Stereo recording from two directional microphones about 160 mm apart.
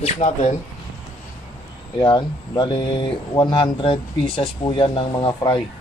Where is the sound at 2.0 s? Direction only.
30° left (ahead or behind).